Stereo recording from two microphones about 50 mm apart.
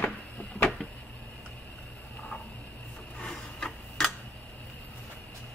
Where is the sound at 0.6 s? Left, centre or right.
Centre.